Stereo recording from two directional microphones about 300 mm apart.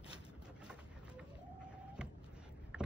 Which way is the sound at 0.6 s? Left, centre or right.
Centre.